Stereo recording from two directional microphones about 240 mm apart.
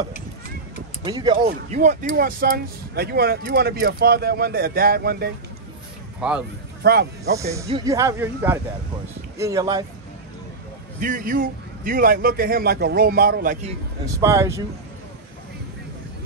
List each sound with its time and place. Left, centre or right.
1.0 s speech: centre
1.4 s speech: right
6.2 s speech: centre
6.8 s speech: right
7.6 s speech: centre
11.0 s speech: right
14.2 s speech: centre